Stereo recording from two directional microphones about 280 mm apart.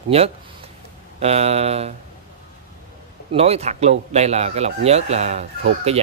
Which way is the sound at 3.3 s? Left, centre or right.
Right.